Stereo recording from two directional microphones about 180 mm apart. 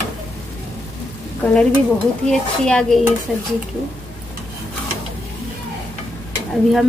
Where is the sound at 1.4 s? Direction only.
5° left (ahead or behind).